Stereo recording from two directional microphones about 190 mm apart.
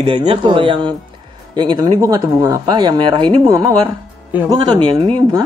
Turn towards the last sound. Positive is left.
turn(degrees=-20)  # may be behind; listen again after turning